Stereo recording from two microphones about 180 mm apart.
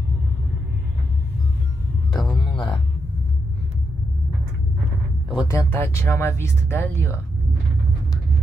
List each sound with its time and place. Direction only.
2.1 s music: centre (ahead or behind)
2.4 s music: 25° left (ahead or behind)
5.3 s speech: 25° left (ahead or behind)
5.7 s speech: 15° left (ahead or behind)